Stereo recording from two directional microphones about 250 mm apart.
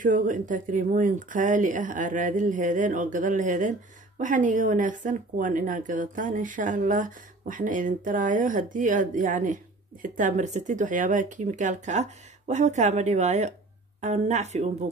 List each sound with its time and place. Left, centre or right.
0.0 s speech: right